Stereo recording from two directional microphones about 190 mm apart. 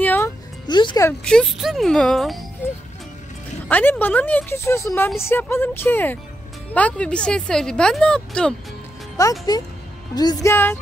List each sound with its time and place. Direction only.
0.0 s music: 10° left (ahead or behind)
0.7 s speech: 25° left (ahead or behind)
1.2 s speech: 5° left (ahead or behind)
3.6 s speech: 5° left (ahead or behind)
9.1 s speech: 15° left (ahead or behind)